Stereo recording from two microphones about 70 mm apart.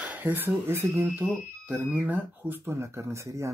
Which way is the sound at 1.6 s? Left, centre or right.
Right.